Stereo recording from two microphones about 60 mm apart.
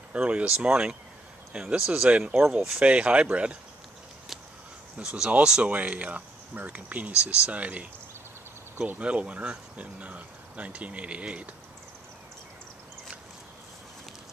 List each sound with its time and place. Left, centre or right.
0.1 s speech: right
4.9 s speech: centre
5.6 s speech: right
9.0 s speech: centre